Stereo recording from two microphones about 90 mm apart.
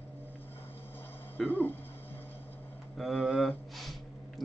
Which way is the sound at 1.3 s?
20° left (ahead or behind).